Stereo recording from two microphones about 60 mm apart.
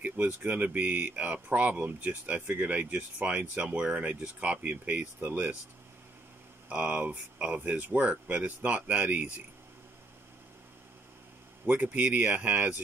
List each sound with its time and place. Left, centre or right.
0.0 s speech: right
6.7 s speech: centre
11.6 s speech: right